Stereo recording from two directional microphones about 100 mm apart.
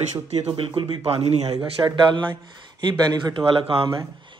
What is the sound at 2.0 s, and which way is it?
Speech, 50° right (ahead or behind).